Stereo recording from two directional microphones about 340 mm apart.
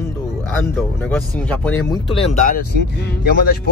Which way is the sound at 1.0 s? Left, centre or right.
Centre.